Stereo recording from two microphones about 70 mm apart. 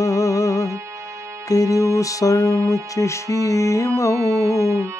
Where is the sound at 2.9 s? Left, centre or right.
Left.